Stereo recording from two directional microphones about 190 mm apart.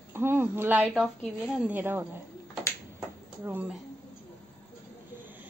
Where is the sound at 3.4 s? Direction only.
10° right (ahead or behind).